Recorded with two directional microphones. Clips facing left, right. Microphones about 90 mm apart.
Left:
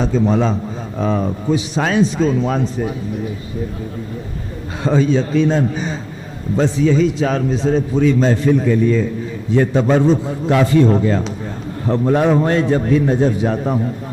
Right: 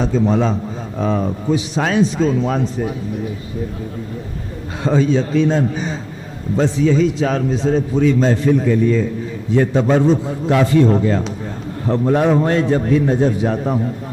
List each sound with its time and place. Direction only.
0.0 s a man's voice: 15° left (ahead or behind)
4.8 s a man's voice: 15° left (ahead or behind)